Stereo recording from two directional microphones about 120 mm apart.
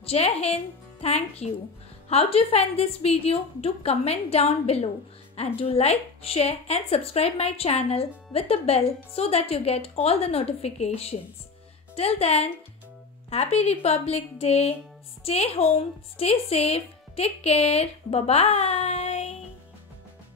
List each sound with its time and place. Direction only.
0.0 s speech: 60° left (ahead or behind)